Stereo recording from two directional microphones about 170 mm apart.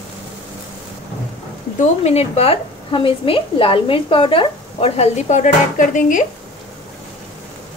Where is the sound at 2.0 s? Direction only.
40° left (ahead or behind).